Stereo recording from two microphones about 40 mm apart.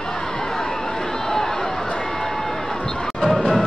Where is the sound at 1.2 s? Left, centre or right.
Centre.